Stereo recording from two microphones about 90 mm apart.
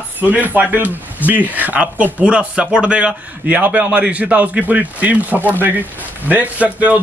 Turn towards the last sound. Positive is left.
turn(degrees=-15)  # may be behind; listen again after turning